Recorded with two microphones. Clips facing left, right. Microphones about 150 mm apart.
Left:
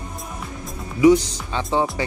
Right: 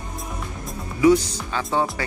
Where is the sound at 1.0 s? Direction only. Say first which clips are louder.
Left 2 dB; 20° left (ahead or behind).